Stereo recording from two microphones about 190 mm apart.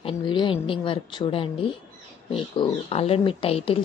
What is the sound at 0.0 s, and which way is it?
A woman's voice, 25° left (ahead or behind).